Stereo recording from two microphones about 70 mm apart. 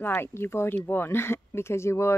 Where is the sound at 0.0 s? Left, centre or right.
Left.